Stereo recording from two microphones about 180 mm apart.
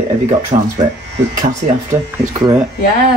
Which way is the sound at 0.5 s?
35° right (ahead or behind).